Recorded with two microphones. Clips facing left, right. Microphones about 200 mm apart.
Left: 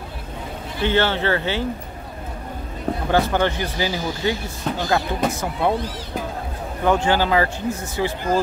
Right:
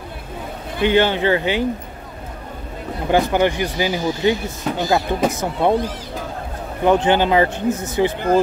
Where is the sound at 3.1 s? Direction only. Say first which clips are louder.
Right 4 dB; 15° right (ahead or behind).